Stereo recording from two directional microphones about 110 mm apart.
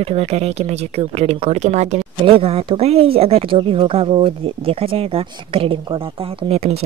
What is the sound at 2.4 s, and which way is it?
Speech, 60° right (ahead or behind).